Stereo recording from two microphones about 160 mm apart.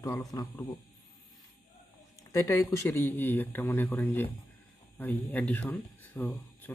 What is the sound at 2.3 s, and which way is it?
A man's voice, 20° left (ahead or behind).